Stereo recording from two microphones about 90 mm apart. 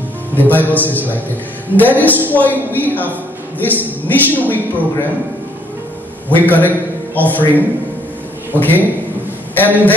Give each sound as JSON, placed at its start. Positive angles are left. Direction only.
{"t": 0.4, "sound": "a woman's voice", "side_deg": 20}
{"t": 6.2, "sound": "a man's voice", "side_deg": 20}